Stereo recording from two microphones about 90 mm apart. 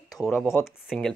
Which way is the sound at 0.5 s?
20° left (ahead or behind).